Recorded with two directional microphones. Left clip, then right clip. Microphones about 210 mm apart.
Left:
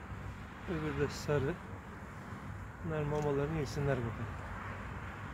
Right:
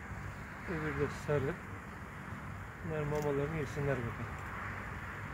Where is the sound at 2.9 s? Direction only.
15° left (ahead or behind).